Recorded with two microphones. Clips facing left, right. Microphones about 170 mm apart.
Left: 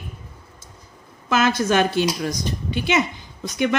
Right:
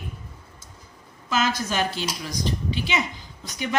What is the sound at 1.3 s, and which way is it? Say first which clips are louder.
A woman's voice: left 6 dB; 60° left (ahead or behind).